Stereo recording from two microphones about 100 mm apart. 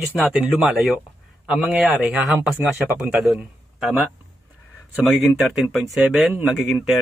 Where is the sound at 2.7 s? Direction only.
15° right (ahead or behind).